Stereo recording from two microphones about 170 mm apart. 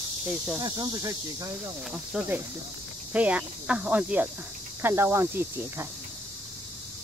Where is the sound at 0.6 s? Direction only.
20° right (ahead or behind).